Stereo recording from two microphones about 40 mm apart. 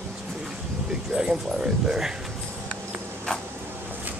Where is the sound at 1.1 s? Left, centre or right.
Centre.